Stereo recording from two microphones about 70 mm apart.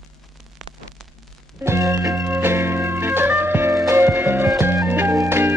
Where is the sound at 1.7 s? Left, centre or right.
Right.